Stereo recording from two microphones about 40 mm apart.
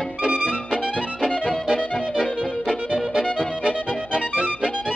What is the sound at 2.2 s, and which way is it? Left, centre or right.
Music, centre.